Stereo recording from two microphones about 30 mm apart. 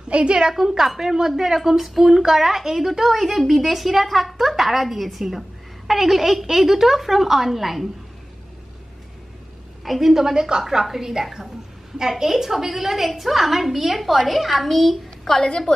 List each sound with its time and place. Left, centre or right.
0.1 s a woman's voice: right
0.5 s a woman's voice: centre
9.8 s a woman's voice: centre
10.1 s a woman's voice: centre